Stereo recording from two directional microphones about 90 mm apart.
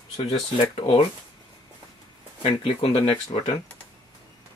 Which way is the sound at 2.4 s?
90° left.